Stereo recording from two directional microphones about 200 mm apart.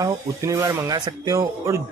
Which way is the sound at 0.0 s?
15° right (ahead or behind).